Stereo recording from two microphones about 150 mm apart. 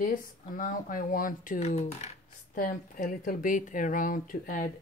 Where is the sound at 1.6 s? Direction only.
45° left (ahead or behind).